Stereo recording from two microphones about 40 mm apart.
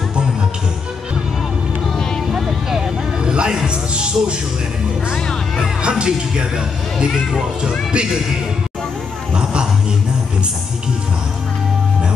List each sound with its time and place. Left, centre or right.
2.3 s vehicle: centre
3.3 s music: centre
5.8 s speech: right
7.9 s speech: right
9.3 s a sound: right